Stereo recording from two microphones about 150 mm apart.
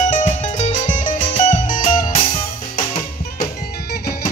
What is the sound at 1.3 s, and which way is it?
Music, 60° left (ahead or behind).